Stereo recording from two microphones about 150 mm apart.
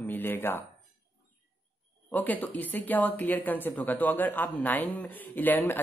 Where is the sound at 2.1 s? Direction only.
10° left (ahead or behind).